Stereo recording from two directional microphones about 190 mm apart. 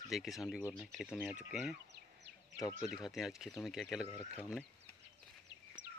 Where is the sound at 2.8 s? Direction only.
Centre (ahead or behind).